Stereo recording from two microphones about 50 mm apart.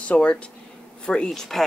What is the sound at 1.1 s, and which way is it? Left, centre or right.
Speech, centre.